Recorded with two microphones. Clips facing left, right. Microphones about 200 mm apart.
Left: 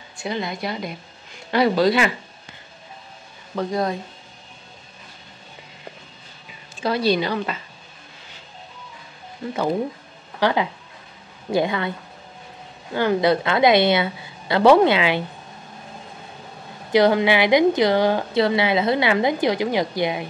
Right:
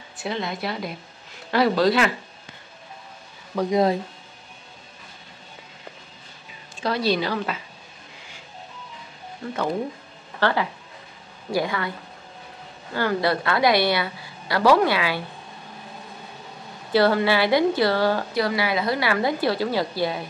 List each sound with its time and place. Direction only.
0.2 s speech: centre (ahead or behind)
3.5 s speech: 20° right (ahead or behind)
6.8 s speech: centre (ahead or behind)
10.4 s a woman's voice: 20° left (ahead or behind)
12.9 s a woman's voice: 20° left (ahead or behind)
16.9 s a woman's voice: 15° left (ahead or behind)